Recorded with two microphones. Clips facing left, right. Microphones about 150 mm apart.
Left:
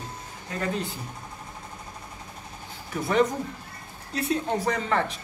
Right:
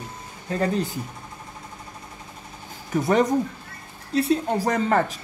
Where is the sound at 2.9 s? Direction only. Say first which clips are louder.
Right 4 dB; 40° right (ahead or behind).